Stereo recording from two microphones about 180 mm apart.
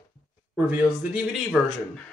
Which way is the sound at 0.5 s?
5° right (ahead or behind).